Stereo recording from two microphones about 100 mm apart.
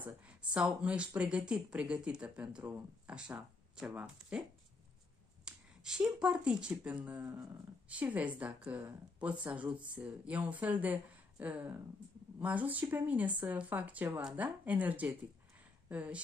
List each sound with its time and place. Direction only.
0.0 s speech: 15° right (ahead or behind)